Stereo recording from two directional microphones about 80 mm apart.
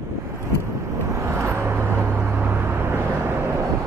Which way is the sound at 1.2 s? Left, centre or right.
Right.